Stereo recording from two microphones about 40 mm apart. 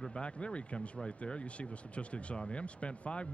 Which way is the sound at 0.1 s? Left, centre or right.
Left.